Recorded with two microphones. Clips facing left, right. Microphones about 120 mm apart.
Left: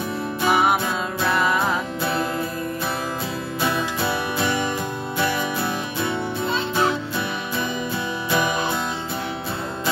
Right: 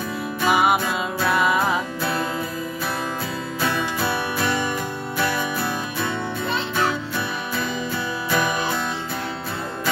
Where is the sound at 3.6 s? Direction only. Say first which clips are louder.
Even; 15° left (ahead or behind).